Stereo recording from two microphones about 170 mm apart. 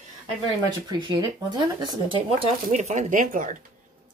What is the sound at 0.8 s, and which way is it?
Speech, 25° right (ahead or behind).